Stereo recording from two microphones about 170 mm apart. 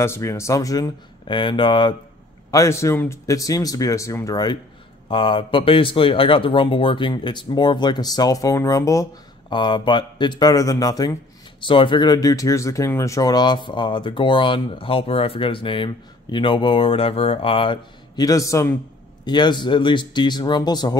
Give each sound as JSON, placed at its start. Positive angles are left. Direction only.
{"t": 0.0, "sound": "speech", "side_deg": 15}
{"t": 2.5, "sound": "speech", "side_deg": 15}